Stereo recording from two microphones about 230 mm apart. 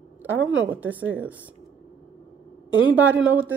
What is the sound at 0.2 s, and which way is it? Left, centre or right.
A woman's voice, centre.